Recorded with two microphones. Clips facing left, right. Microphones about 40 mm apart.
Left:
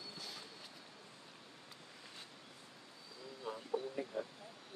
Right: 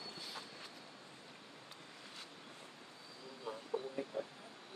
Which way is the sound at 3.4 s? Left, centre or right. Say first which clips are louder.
Left 1 dB; centre.